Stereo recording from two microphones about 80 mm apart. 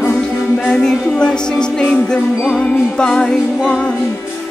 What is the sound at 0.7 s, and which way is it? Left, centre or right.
Music, centre.